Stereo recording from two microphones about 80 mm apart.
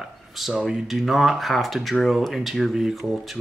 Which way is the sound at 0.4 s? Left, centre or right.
Centre.